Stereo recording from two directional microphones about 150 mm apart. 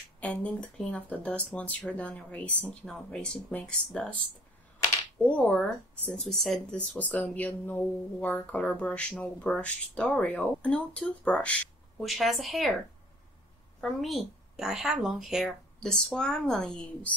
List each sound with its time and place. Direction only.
0.2 s speech: 10° left (ahead or behind)
5.2 s a woman's voice: 10° left (ahead or behind)
13.7 s a woman's voice: centre (ahead or behind)